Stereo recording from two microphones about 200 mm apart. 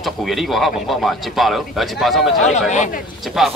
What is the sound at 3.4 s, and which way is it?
Speech, centre (ahead or behind).